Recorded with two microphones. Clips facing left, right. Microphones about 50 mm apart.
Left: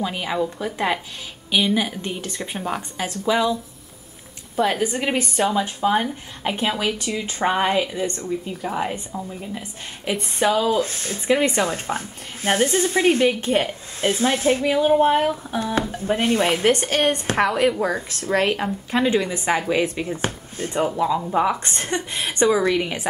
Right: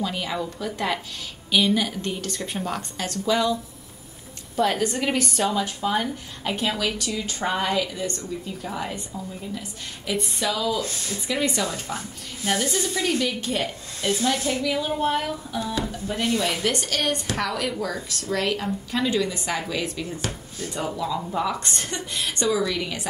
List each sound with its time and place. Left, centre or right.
0.0 s a woman's voice: left
4.6 s a woman's voice: centre; by 23.0 s left